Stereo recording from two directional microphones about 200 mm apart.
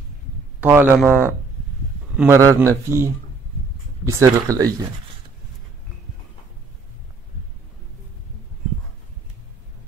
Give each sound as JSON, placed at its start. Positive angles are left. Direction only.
{"t": 0.6, "sound": "a man's voice", "side_deg": -10}